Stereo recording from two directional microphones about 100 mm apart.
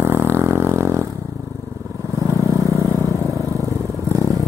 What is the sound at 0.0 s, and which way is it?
Vehicle, 25° right (ahead or behind).